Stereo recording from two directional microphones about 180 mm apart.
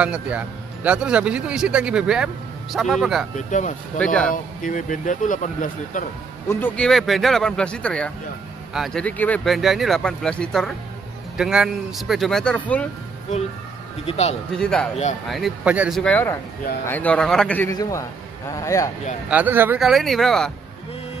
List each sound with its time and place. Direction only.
0.0 s speech: 5° right (ahead or behind)
3.3 s speech: 45° left (ahead or behind)
4.0 s speech: 5° left (ahead or behind)
4.3 s speech: 45° left (ahead or behind)
6.5 s speech: 10° left (ahead or behind)
14.0 s speech: 35° left (ahead or behind)
14.6 s speech: 5° left (ahead or behind)
16.0 s speech: 10° left (ahead or behind)
19.2 s speech: 10° right (ahead or behind)